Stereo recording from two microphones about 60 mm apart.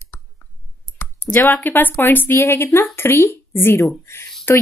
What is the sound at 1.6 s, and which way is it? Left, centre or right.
Speech, left.